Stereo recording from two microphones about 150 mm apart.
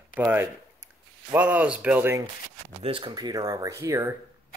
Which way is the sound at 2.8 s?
35° right (ahead or behind).